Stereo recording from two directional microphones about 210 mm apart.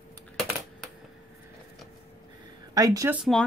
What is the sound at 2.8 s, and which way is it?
Speech, 15° right (ahead or behind).